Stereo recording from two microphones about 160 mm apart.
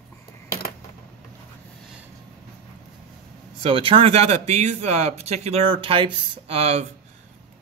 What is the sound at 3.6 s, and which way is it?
A man's voice, 35° right (ahead or behind).